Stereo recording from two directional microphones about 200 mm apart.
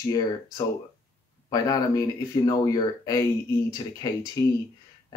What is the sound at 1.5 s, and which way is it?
Speech, 15° left (ahead or behind).